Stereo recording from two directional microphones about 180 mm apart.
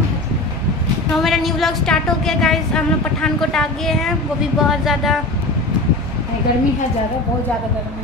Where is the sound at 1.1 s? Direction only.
Centre (ahead or behind).